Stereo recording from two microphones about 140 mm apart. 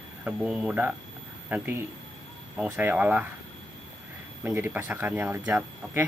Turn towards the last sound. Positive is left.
turn(degrees=-15)  # may be behind; listen again after turning